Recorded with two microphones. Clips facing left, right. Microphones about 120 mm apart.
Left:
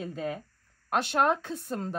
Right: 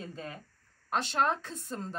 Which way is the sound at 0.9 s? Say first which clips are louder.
Left 4 dB; 55° left (ahead or behind).